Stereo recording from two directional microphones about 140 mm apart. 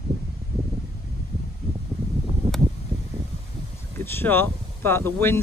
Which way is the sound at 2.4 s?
50° right (ahead or behind).